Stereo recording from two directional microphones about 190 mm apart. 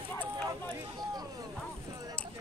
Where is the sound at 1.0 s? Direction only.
20° right (ahead or behind).